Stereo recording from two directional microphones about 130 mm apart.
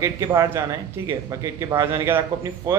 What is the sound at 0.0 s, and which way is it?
A man's voice, 25° right (ahead or behind).